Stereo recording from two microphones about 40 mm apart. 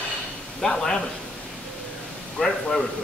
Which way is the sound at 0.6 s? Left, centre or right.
Centre.